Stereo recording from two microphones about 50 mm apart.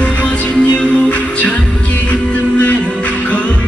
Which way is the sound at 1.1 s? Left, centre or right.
Left.